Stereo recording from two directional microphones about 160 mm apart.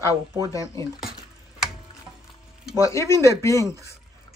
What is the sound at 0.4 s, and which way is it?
Speech, 20° left (ahead or behind).